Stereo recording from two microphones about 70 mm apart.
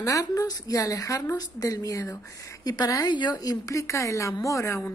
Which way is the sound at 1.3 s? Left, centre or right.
Left.